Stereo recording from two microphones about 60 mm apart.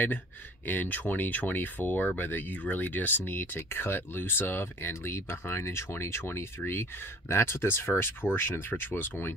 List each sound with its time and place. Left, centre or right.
0.7 s speech: left